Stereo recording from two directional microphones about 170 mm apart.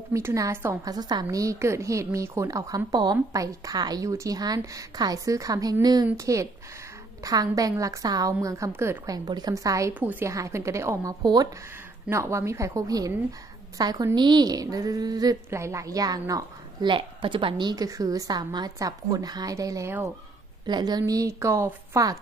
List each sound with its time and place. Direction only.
0.1 s a woman's voice: 20° right (ahead or behind)